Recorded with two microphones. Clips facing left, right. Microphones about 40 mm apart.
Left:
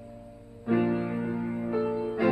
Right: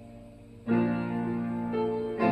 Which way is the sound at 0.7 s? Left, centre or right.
Centre.